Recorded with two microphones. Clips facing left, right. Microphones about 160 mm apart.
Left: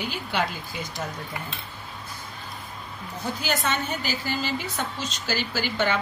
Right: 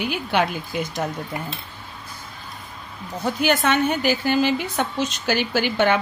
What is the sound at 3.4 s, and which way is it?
Speech, 60° right (ahead or behind).